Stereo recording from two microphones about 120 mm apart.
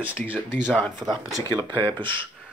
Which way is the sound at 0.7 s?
10° left (ahead or behind).